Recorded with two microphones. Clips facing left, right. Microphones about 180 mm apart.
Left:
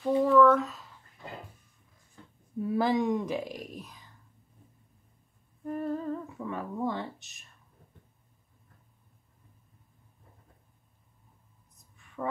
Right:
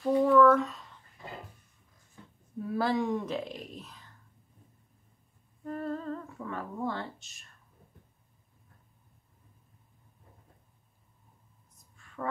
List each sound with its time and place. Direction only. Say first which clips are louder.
0.0 s a sound: even; centre (ahead or behind)
2.6 s speech: left 3 dB; 20° left (ahead or behind)
5.7 s humming: left 3 dB; 10° left (ahead or behind)
6.9 s speech: left 2 dB; 20° left (ahead or behind)